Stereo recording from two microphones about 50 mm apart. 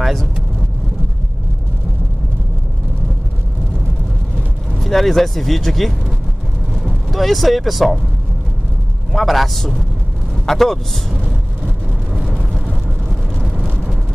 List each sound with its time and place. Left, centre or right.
0.0 s vehicle: centre
4.7 s speech: centre
6.7 s vehicle: centre
9.1 s speech: centre
11.6 s vehicle: centre
13.4 s vehicle: centre